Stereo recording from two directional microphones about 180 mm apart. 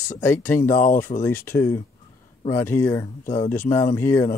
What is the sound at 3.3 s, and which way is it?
Speech, 35° left (ahead or behind).